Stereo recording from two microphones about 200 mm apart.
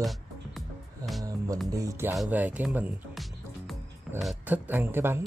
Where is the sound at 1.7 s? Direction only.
15° right (ahead or behind).